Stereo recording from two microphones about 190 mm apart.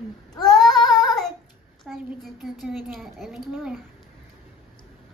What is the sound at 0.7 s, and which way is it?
Child singing, 20° left (ahead or behind).